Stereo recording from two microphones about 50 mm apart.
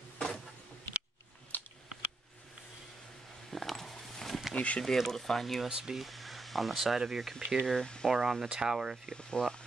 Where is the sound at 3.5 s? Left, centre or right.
Centre.